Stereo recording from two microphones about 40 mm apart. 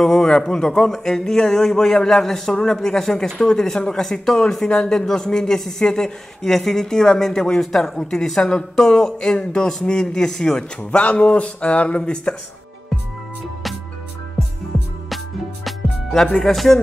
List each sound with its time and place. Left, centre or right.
0.0 s a sound: centre
0.4 s speech: centre
8.0 s speech: centre
11.0 s speech: left
12.0 s speech: left
15.6 s music: centre